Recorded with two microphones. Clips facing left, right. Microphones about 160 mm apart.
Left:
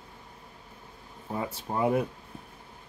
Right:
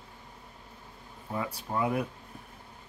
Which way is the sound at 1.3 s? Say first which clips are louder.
Left 1 dB; 25° left (ahead or behind).